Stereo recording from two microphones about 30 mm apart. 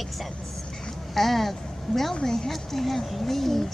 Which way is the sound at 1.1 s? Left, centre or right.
Centre.